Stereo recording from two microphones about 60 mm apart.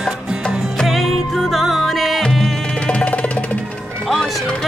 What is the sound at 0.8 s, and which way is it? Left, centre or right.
Music, centre.